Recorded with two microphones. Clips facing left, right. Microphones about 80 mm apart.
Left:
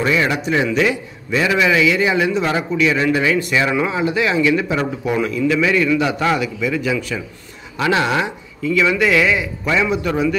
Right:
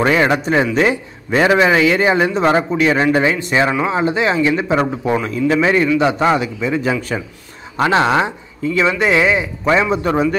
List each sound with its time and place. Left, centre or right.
0.0 s a man's voice: right